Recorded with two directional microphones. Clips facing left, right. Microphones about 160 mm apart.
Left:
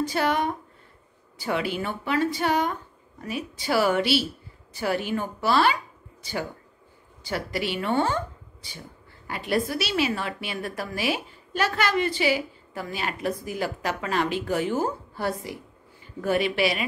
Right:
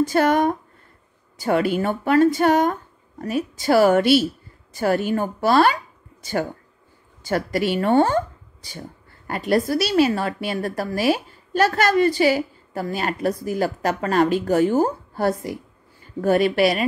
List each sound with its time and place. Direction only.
0.0 s speech: 45° right (ahead or behind)
7.2 s speech: 45° right (ahead or behind)
9.3 s a woman's voice: 40° right (ahead or behind)